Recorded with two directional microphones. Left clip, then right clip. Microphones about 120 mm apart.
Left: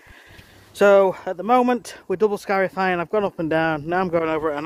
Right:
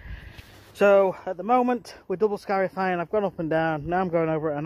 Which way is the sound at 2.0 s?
30° left (ahead or behind).